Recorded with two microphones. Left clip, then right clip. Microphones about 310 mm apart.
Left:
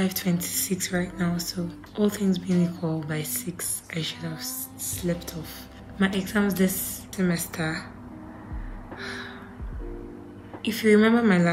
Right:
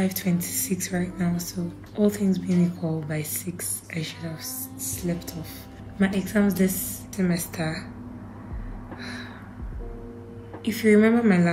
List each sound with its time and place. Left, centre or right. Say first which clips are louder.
0.0 s a woman's voice: even; centre
5.9 s a woman's voice: right 1 dB; centre
9.0 s gasp: left 2 dB; centre
10.6 s a woman's voice: even; centre